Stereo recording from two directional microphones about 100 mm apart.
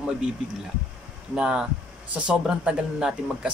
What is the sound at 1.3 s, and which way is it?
Speech, 10° right (ahead or behind).